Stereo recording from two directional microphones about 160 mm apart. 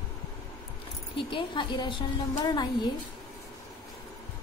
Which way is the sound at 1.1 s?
30° left (ahead or behind).